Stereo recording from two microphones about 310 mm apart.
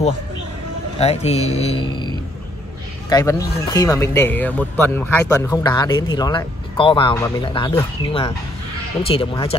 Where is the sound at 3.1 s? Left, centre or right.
Centre.